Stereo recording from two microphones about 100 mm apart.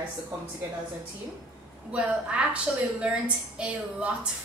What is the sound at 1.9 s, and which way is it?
A woman's voice, 10° right (ahead or behind).